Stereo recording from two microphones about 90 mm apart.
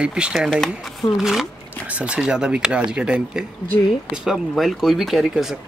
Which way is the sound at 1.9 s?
15° right (ahead or behind).